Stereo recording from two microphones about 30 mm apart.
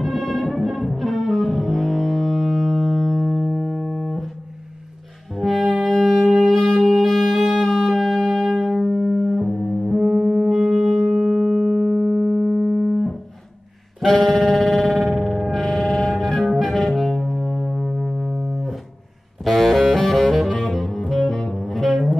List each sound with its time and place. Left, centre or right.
0.0 s music: centre
5.3 s brass instrument: centre
6.4 s music: centre
9.5 s music: left
9.9 s music: centre
13.9 s music: centre
14.5 s a sound: centre
19.4 s music: centre
20.0 s saxophone: centre